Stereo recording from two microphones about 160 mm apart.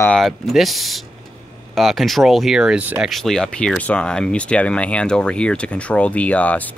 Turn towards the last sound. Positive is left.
turn(degrees=10)  # may be behind; listen again after turning